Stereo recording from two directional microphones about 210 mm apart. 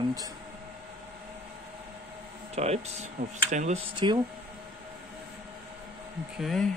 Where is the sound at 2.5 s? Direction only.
30° right (ahead or behind).